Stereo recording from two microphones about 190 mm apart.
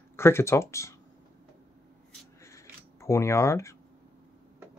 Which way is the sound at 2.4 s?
15° left (ahead or behind).